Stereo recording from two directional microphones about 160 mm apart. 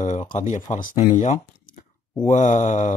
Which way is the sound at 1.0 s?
45° left (ahead or behind).